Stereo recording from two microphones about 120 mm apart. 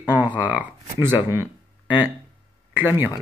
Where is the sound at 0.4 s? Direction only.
10° right (ahead or behind).